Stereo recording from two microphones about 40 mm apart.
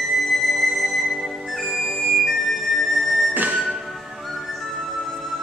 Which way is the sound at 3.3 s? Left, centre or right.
Right.